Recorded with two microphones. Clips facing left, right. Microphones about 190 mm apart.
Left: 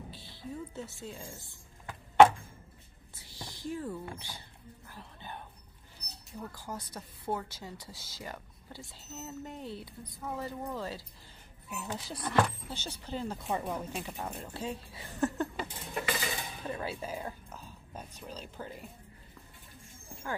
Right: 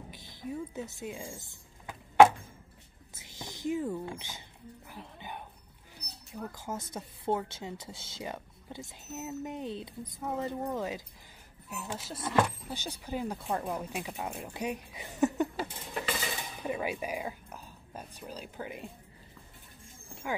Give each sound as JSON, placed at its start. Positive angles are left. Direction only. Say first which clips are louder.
{"t": 0.1, "sound": "speech", "louder": "right 7 dB", "side_deg": -15}
{"t": 1.9, "sound": "chop", "louder": "right 1 dB", "side_deg": -10}
{"t": 3.2, "sound": "speech", "louder": "right 3 dB", "side_deg": -20}
{"t": 4.8, "sound": "dog", "louder": "right 2 dB", "side_deg": -15}
{"t": 6.5, "sound": "speech", "louder": "right 3 dB", "side_deg": -20}
{"t": 11.7, "sound": "speech", "louder": "even", "side_deg": 0}
{"t": 13.5, "sound": "speech", "louder": "even", "side_deg": 0}
{"t": 13.7, "sound": "speech", "louder": "right 1 dB", "side_deg": -10}
{"t": 15.5, "sound": "a sound", "louder": "right 2 dB", "side_deg": -5}
{"t": 16.6, "sound": "speech", "louder": "right 4 dB", "side_deg": -15}